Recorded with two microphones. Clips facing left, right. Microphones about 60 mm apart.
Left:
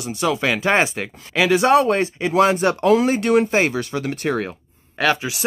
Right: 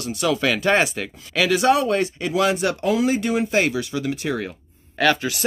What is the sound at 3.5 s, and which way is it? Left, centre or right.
Speech, left.